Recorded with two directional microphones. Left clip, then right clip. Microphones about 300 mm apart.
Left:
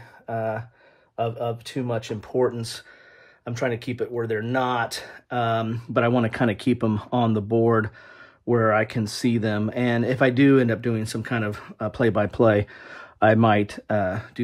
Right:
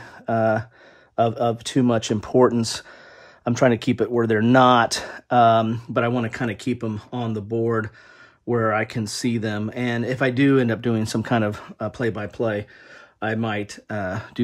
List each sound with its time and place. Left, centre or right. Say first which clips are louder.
0.3 s speech: right 7 dB; right; by 14.4 s centre